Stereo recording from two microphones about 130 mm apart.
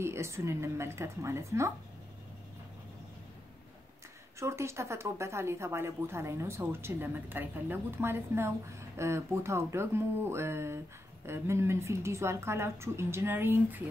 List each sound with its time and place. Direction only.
0.0 s speech: 20° right (ahead or behind)
4.4 s speech: 20° right (ahead or behind)